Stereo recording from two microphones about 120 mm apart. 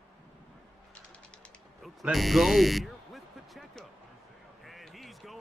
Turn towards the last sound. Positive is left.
turn(degrees=0)  # may be behind; listen again after turning